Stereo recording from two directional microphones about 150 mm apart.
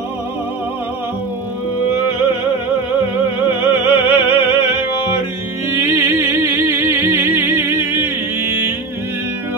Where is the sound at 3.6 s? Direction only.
15° right (ahead or behind).